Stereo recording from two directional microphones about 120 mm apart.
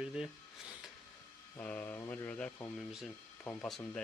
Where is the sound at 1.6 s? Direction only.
15° left (ahead or behind).